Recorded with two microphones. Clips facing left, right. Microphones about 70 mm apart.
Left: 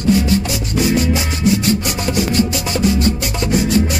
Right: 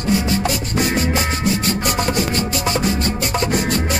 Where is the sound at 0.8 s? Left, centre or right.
Right.